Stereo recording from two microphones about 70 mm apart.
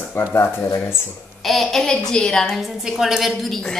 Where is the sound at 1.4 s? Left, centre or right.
Centre.